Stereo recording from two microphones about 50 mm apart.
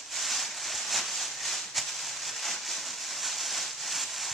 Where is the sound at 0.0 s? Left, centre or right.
Centre.